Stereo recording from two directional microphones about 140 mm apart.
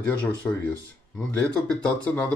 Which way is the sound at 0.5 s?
15° left (ahead or behind).